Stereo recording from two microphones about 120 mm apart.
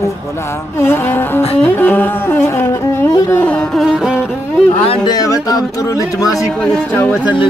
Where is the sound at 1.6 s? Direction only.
15° left (ahead or behind).